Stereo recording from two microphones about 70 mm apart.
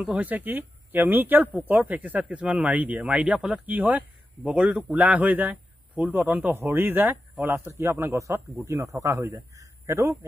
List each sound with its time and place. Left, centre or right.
0.0 s speech: right
6.5 s a man's voice: right
8.6 s a man's voice: right